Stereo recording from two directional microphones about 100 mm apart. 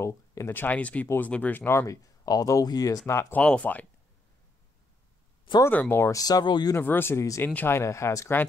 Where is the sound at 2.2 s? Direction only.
35° left (ahead or behind).